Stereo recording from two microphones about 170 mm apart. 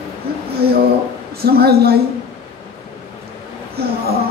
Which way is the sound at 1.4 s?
65° right (ahead or behind).